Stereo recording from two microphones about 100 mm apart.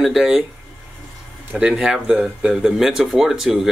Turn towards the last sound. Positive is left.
turn(degrees=-5)  # may be behind; listen again after turning